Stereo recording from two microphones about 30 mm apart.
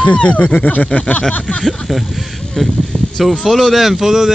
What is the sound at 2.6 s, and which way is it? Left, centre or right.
Speech, centre.